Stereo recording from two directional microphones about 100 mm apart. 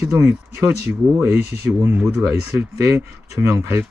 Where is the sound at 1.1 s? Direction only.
25° right (ahead or behind).